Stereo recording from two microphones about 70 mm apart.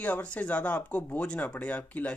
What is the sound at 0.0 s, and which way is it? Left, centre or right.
Speech, centre.